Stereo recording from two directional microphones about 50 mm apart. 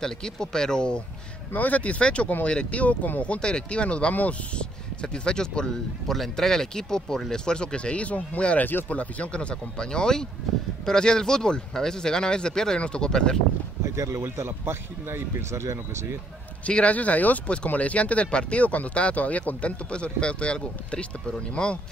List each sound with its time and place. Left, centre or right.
0.0 s speech: centre
1.5 s speech: left
3.3 s speech: centre
4.1 s speech: left
4.6 s speech: centre
13.8 s speech: right
15.5 s speech: right
16.6 s speech: left